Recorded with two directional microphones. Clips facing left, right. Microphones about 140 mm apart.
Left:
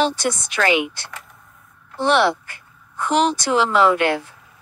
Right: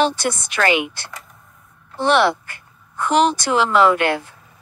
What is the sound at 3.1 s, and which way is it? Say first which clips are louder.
Speech: right 2 dB; 60° right (ahead or behind).